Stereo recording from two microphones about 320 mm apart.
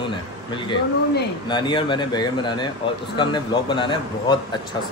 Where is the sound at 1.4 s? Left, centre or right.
Centre.